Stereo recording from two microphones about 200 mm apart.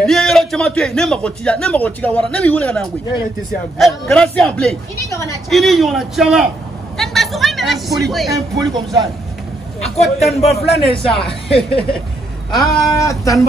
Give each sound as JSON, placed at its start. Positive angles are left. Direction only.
{"t": 0.0, "sound": "a man's voice", "side_deg": 0}
{"t": 7.0, "sound": "a sound", "side_deg": 0}
{"t": 8.3, "sound": "speech", "side_deg": -20}
{"t": 10.1, "sound": "speech", "side_deg": 30}
{"t": 11.1, "sound": "a man's voice", "side_deg": 0}
{"t": 12.5, "sound": "a man's voice", "side_deg": 0}
{"t": 12.9, "sound": "speech", "side_deg": 15}